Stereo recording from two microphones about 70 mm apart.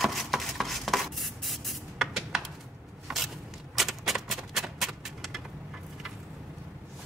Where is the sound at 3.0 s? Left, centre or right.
Centre.